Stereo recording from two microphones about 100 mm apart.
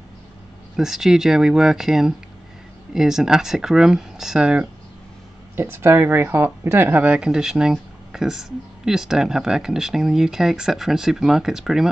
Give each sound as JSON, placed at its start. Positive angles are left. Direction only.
{"t": 0.7, "sound": "speech", "side_deg": -5}
{"t": 5.6, "sound": "speech", "side_deg": -25}